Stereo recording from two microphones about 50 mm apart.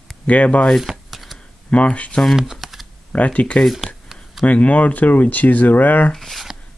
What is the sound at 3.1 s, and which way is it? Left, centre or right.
Speech, left.